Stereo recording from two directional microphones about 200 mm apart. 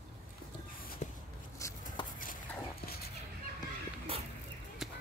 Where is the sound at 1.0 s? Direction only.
35° left (ahead or behind).